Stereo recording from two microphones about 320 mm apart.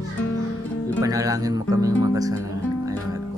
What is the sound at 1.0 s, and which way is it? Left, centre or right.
Speech, centre.